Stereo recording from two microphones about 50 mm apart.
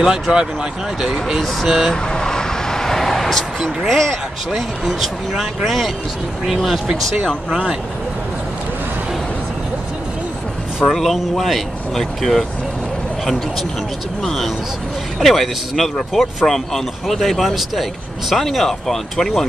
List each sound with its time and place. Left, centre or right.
0.0 s speech: centre
1.7 s speech: centre
2.0 s vehicle: centre
4.6 s speech: centre
10.9 s speech: centre